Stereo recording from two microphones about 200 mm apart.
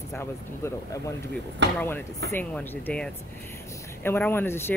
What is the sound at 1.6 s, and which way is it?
Speech, 60° right (ahead or behind).